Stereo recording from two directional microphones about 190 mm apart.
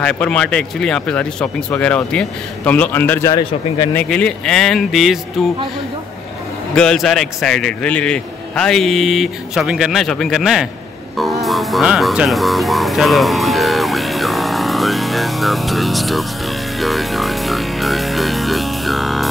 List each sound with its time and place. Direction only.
0.0 s speech: 5° left (ahead or behind)
3.9 s a man's voice: 5° left (ahead or behind)
6.7 s a man's voice: 5° left (ahead or behind)
11.1 s music: centre (ahead or behind)